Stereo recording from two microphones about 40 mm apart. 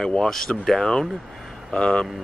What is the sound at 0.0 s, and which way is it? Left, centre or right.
Speech, centre.